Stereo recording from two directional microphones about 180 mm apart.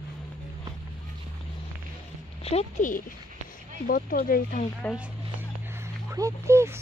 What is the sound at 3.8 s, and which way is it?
Speech, 50° left (ahead or behind).